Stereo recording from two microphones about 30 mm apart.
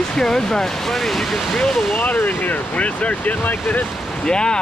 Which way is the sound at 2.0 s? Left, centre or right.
Left.